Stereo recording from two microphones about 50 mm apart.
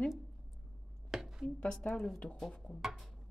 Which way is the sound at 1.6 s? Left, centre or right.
Left.